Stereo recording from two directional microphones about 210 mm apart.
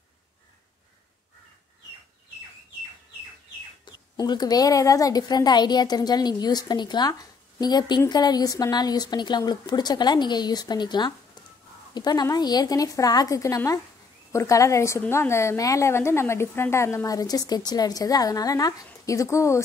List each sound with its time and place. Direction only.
3.8 s a woman's voice: 20° left (ahead or behind)